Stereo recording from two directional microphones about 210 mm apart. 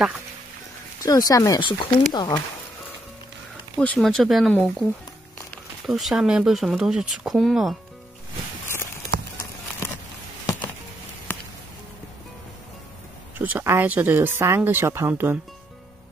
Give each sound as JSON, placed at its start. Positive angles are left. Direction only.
{"t": 1.0, "sound": "speech", "side_deg": 15}
{"t": 3.7, "sound": "speech", "side_deg": 5}
{"t": 5.9, "sound": "speech", "side_deg": 0}
{"t": 10.4, "sound": "a sound", "side_deg": 15}
{"t": 13.4, "sound": "speech", "side_deg": -10}